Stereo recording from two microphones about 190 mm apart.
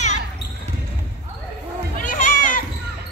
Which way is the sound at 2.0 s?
45° left (ahead or behind).